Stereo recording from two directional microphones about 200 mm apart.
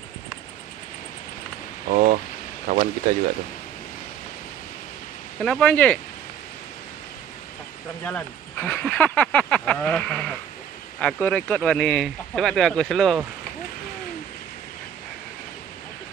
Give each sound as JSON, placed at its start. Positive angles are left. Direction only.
{"t": 1.9, "sound": "a sound", "side_deg": -40}
{"t": 5.4, "sound": "speech", "side_deg": 5}
{"t": 8.0, "sound": "speech", "side_deg": 10}